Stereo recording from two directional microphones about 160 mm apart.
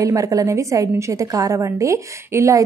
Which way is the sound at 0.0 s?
20° right (ahead or behind).